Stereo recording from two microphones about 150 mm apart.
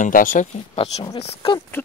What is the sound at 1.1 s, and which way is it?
Speech, 35° left (ahead or behind).